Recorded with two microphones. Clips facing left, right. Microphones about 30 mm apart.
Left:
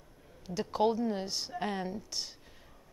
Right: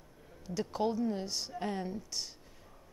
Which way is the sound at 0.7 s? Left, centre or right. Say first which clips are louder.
Left 4 dB; left.